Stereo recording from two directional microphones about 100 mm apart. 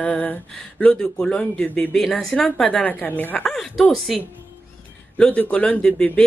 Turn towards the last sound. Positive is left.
turn(degrees=10)  # may be behind; listen again after turning